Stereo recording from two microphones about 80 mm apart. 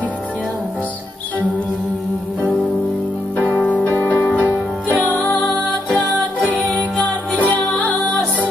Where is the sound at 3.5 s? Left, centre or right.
Centre.